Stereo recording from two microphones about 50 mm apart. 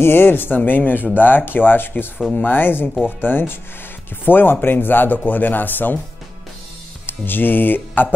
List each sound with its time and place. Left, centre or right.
0.0 s speech: left
7.1 s music: left